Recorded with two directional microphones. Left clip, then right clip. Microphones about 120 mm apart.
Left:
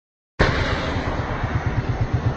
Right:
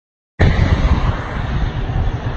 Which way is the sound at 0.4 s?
35° left (ahead or behind).